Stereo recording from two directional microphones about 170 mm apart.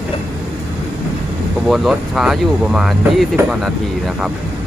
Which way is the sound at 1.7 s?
Centre (ahead or behind).